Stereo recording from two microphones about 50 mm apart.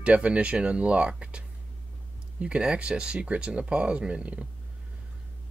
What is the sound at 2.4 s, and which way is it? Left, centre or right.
Speech, right.